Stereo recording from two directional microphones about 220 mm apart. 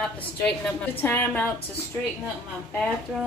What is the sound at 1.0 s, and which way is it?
Speech, 10° left (ahead or behind).